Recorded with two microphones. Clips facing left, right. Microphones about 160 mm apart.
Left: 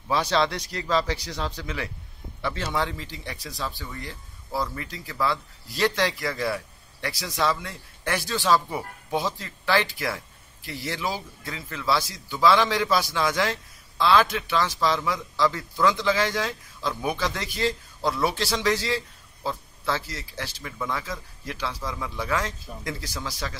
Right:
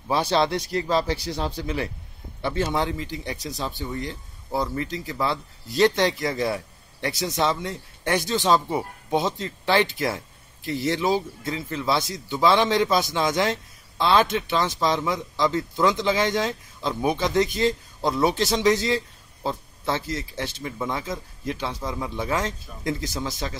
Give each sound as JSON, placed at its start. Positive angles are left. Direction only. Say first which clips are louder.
{"t": 0.3, "sound": "speech", "louder": "right 3 dB", "side_deg": -20}